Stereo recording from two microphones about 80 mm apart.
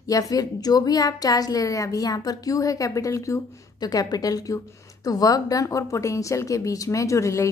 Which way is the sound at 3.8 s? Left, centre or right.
Left.